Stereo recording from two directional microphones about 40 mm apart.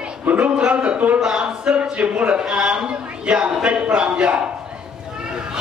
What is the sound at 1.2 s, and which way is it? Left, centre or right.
A woman's voice, centre.